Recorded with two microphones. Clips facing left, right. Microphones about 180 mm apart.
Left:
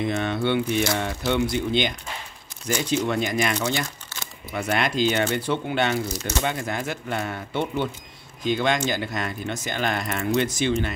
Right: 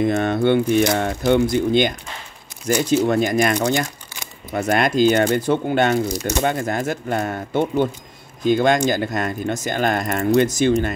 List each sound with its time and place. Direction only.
0.0 s speech: 50° right (ahead or behind)
6.0 s speech: 15° right (ahead or behind)
6.4 s speech: 45° right (ahead or behind)